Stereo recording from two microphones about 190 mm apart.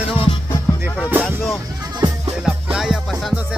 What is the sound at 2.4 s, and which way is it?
Music, 5° right (ahead or behind).